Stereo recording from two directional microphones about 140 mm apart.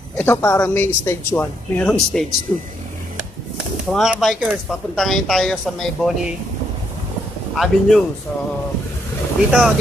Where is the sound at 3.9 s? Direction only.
Centre (ahead or behind).